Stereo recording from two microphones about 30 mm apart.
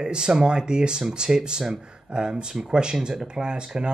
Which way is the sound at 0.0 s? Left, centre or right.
Right.